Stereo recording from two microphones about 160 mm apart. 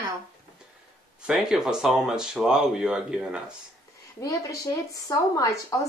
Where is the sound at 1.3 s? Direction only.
5° right (ahead or behind).